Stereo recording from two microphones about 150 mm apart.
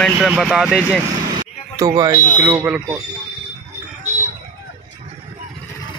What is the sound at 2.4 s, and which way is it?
Speech, 10° right (ahead or behind).